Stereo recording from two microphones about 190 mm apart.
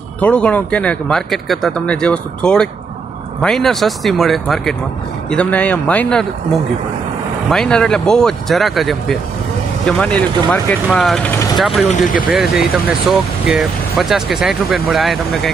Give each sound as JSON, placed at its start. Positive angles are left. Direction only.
{"t": 0.2, "sound": "speech", "side_deg": 5}
{"t": 7.4, "sound": "speech", "side_deg": 5}
{"t": 11.9, "sound": "speech", "side_deg": 45}
{"t": 12.3, "sound": "speech", "side_deg": -5}